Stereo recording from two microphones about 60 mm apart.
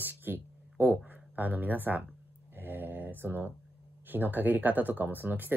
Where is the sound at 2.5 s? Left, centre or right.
Right.